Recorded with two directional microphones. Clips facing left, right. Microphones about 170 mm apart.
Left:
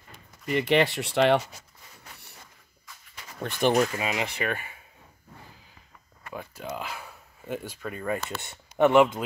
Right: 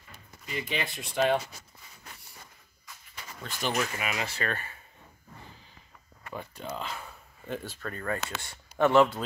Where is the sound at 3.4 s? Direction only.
60° left (ahead or behind).